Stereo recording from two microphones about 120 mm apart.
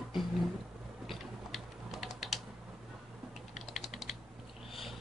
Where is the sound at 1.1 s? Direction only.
Centre (ahead or behind).